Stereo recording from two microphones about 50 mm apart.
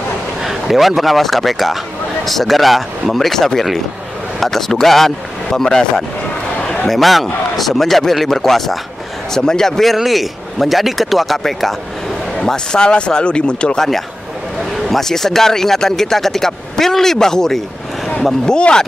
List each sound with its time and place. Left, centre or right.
0.4 s a man's voice: centre
14.9 s speech: centre